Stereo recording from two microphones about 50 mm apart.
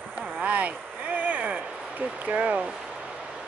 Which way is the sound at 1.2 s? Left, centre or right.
Right.